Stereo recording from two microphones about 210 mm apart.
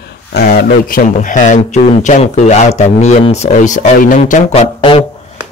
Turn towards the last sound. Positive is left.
turn(degrees=25)  # may be behind; listen again after turning